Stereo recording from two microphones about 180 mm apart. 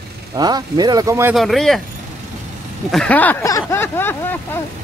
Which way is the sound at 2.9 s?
5° left (ahead or behind).